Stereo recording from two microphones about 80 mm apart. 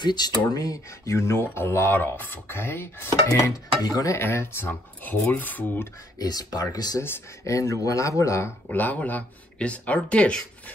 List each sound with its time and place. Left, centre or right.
0.0 s speech: left
3.8 s dishes: left
4.1 s speech: left
6.1 s speech: left
7.0 s speech: left
8.6 s speech: centre